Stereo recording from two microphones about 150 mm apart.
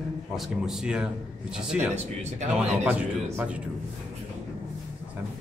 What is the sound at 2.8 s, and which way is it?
Speech, 10° right (ahead or behind).